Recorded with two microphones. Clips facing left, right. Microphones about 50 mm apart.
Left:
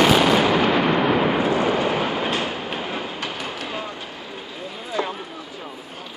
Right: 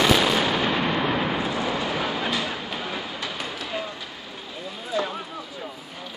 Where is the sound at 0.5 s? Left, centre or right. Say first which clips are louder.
Left 5 dB; left.